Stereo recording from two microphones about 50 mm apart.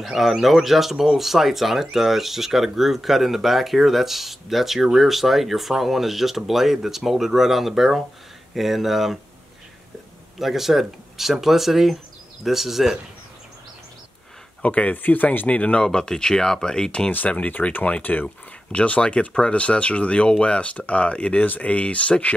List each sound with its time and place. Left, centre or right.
0.0 s speech: centre
10.4 s speech: centre
14.6 s speech: left
15.4 s speech: left
17.3 s speech: left